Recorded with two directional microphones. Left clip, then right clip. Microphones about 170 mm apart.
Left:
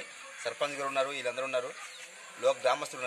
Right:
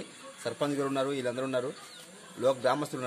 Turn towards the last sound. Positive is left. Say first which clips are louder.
# right 1 dB
turn(degrees=-15)  # may be behind; listen again after turning